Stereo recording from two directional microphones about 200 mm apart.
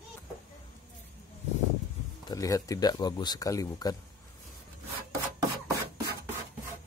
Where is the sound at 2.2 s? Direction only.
15° left (ahead or behind).